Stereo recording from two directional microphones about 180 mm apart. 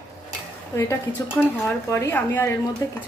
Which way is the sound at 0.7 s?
15° left (ahead or behind).